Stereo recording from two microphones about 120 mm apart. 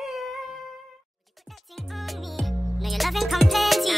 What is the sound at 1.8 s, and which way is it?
Music, centre (ahead or behind).